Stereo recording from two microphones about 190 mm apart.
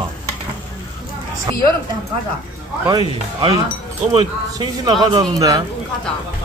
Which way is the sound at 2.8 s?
20° right (ahead or behind).